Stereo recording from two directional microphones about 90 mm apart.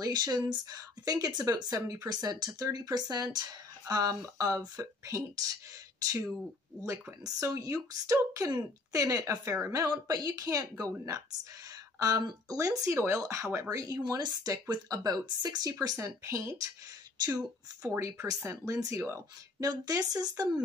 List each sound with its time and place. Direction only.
0.0 s speech: 45° right (ahead or behind)
7.2 s speech: 35° right (ahead or behind)
12.0 s speech: 45° right (ahead or behind)
15.8 s speech: 40° right (ahead or behind)
17.8 s speech: 30° right (ahead or behind)
19.7 s speech: 45° right (ahead or behind)